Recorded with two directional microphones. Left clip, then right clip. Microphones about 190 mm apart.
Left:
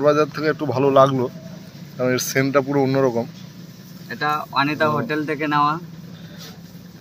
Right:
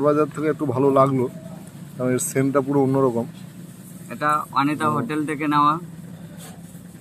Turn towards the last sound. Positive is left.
turn(degrees=25)  # may be behind; listen again after turning